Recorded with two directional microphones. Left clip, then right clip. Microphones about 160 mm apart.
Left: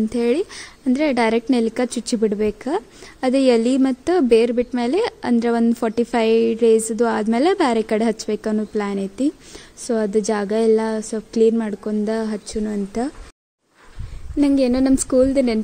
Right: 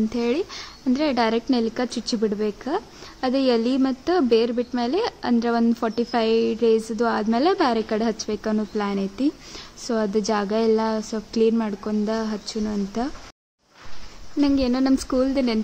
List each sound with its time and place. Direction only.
0.1 s a woman's voice: 35° left (ahead or behind)
14.4 s a woman's voice: 35° left (ahead or behind)